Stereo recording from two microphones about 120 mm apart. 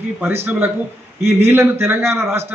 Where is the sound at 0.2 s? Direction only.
20° right (ahead or behind).